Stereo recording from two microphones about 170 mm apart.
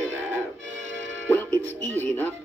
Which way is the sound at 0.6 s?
90° right.